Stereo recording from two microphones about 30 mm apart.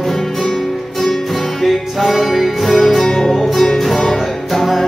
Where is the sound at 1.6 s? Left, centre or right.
Centre.